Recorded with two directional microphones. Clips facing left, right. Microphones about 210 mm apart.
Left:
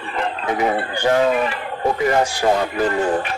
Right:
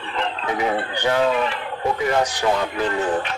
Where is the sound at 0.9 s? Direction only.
45° left (ahead or behind).